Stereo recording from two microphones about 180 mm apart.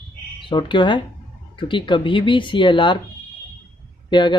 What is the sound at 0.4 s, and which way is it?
Speech, 25° left (ahead or behind).